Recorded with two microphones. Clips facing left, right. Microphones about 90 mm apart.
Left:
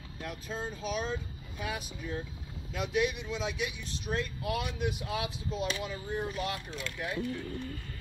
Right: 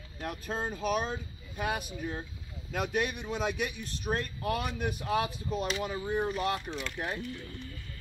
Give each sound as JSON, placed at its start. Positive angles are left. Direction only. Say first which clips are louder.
{"t": 0.2, "sound": "speech", "louder": "right 3 dB", "side_deg": -50}